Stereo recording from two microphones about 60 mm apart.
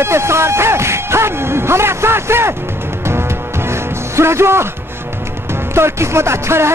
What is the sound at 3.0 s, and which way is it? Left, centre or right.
Music, right.